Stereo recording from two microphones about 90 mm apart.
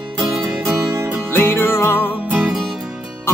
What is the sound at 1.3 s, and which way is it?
Music, 25° left (ahead or behind).